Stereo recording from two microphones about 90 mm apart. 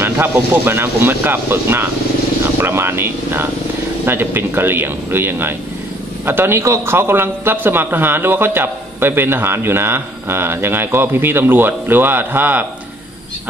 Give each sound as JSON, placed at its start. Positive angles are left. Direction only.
{"t": 0.0, "sound": "a man's voice", "side_deg": -25}